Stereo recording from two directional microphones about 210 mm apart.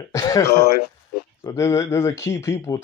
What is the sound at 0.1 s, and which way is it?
Speech, 15° left (ahead or behind).